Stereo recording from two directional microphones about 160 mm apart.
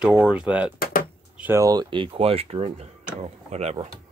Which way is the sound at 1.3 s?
10° right (ahead or behind).